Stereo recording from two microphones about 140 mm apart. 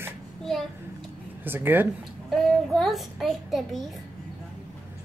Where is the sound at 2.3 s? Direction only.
Centre (ahead or behind).